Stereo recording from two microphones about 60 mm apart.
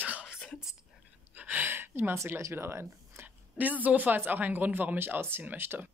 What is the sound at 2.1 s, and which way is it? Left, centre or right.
Speech, right.